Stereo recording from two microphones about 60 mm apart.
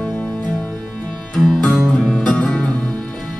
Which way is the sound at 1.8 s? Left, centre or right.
Centre.